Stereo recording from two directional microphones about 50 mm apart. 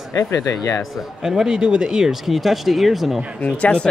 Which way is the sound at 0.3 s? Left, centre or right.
Left.